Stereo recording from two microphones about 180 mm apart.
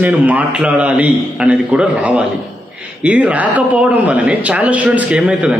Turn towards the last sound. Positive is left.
turn(degrees=-5)  # may be behind; listen again after turning